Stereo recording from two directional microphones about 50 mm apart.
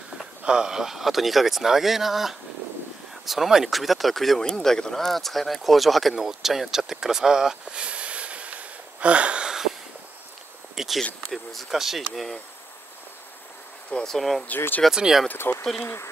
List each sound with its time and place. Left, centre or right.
0.5 s speech: centre
10.8 s speech: centre
11.2 s speech: centre
14.0 s speech: centre
14.5 s speech: left
14.9 s speech: centre
15.3 s speech: left